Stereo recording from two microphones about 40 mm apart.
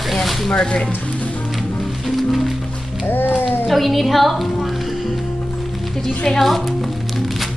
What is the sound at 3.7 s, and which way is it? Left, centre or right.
Music, centre.